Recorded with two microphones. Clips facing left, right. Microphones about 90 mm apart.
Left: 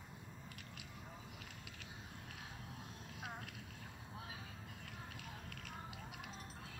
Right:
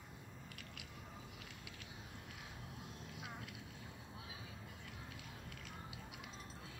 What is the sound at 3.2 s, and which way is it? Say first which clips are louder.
Boat: left 3 dB; 40° left (ahead or behind).